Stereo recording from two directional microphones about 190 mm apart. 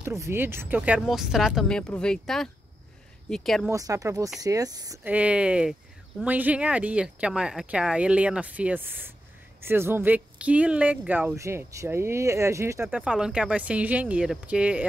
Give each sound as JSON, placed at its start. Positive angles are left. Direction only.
{"t": 0.0, "sound": "speech", "side_deg": -15}
{"t": 3.7, "sound": "speech", "side_deg": -15}